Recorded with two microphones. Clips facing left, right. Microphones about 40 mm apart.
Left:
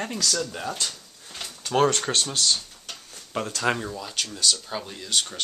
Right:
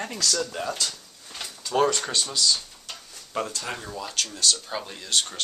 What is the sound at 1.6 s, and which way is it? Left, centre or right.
Speech, left.